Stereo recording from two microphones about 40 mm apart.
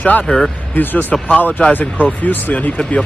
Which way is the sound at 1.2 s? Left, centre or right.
Left.